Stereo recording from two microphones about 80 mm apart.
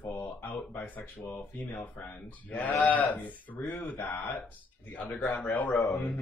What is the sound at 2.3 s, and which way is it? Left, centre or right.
Speech, left.